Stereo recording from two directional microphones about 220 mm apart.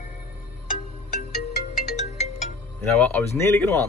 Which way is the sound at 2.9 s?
5° left (ahead or behind).